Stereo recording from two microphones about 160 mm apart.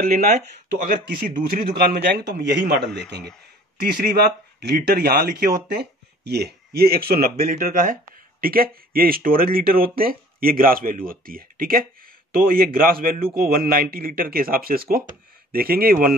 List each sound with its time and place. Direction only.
0.1 s speech: 70° right (ahead or behind)
5.7 s speech: 90° right; by 16.2 s 65° right (ahead or behind)